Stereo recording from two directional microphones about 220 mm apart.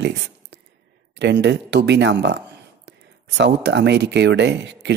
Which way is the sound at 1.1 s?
50° right (ahead or behind).